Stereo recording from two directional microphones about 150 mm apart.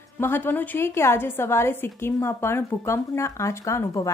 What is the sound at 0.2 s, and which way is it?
A woman's voice, 15° left (ahead or behind).